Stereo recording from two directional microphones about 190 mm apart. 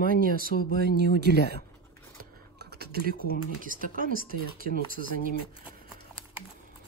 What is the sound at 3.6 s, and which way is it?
Speech, 45° right (ahead or behind).